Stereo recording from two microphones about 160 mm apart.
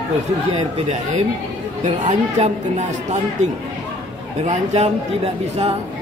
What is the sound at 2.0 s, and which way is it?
Speech, 45° right (ahead or behind).